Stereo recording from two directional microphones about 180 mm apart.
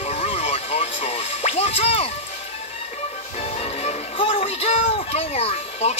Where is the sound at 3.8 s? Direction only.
35° left (ahead or behind).